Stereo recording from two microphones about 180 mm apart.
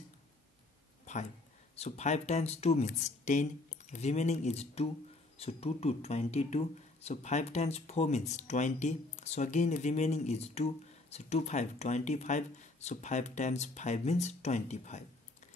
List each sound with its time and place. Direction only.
1.8 s speech: 40° left (ahead or behind)